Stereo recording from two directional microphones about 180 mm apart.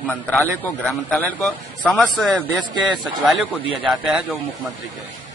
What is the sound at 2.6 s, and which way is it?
Speech, 25° right (ahead or behind).